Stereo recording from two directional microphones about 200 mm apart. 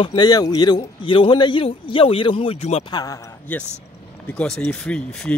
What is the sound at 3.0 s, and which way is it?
Speech, 15° left (ahead or behind).